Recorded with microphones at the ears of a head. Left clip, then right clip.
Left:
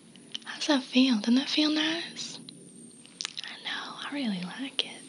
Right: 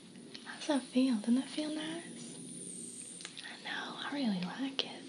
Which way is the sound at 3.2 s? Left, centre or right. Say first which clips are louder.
Left 11 dB; left.